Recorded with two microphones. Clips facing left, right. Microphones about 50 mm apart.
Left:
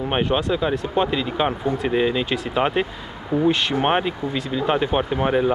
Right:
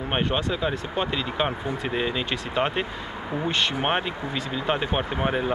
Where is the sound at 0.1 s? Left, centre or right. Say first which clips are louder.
Left 4 dB; centre.